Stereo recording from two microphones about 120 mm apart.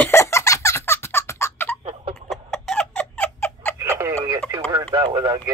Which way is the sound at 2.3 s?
5° left (ahead or behind).